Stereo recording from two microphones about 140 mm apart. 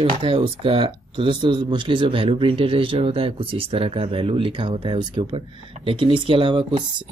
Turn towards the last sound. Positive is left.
turn(degrees=-35)  # may be behind; listen again after turning